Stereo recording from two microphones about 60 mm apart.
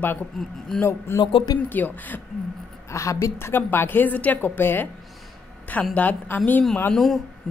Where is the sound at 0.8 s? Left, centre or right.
Left.